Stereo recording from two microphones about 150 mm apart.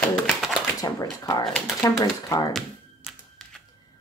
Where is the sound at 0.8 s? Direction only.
25° left (ahead or behind).